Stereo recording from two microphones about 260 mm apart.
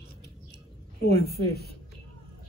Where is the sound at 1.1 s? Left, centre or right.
Left.